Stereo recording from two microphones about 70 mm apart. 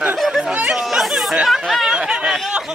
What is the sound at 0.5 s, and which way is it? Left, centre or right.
Chatter, centre.